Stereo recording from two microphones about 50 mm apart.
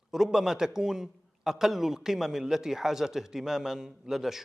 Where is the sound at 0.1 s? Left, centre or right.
Centre.